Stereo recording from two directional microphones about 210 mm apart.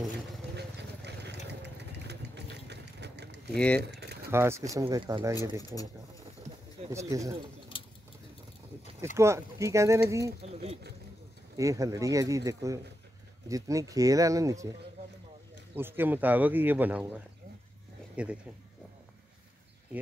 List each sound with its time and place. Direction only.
0.6 s vehicle: 55° right (ahead or behind)
3.5 s speech: 5° left (ahead or behind)
3.8 s a sound: 55° right (ahead or behind)
4.3 s speech: 10° right (ahead or behind)
6.9 s speech: 15° right (ahead or behind)
7.7 s a sound: 25° left (ahead or behind)
9.1 s speech: 15° right (ahead or behind)
10.4 s a sound: 30° right (ahead or behind)
11.5 s speech: 15° right (ahead or behind)
15.7 s speech: 10° right (ahead or behind)
18.1 s speech: 5° right (ahead or behind)